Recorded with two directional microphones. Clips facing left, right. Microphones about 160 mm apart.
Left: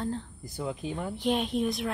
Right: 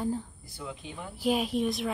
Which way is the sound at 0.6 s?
45° left (ahead or behind).